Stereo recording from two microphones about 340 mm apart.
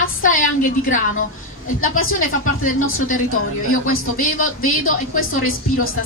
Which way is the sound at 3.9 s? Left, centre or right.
Left.